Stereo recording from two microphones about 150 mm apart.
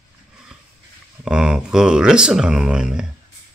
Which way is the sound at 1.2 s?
5° right (ahead or behind).